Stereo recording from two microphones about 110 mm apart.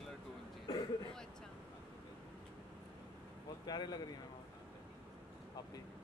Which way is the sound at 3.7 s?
40° left (ahead or behind).